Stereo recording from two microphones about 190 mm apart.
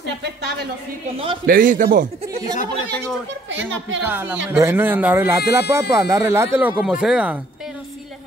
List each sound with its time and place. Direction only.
1.4 s a man's voice: 45° right (ahead or behind)
3.4 s a child's voice: 75° right (ahead or behind)
4.0 s speech: 10° right (ahead or behind)